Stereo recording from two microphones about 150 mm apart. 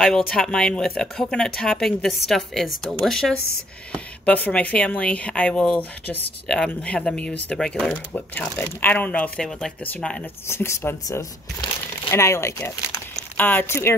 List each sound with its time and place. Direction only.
0.3 s speech: 5° left (ahead or behind)